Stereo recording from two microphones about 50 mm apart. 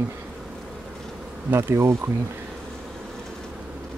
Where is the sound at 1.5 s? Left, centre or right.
Right.